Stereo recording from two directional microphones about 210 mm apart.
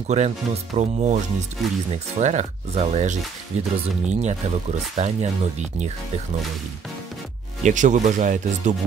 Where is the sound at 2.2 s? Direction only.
35° right (ahead or behind).